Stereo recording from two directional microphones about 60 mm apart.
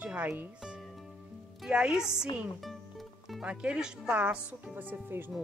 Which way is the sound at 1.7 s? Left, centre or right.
Centre.